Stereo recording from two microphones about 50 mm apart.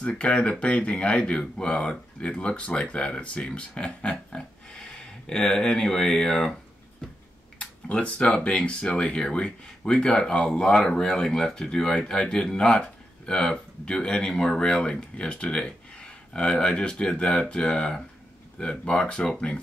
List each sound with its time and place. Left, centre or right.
0.0 s speech: left
7.5 s speech: left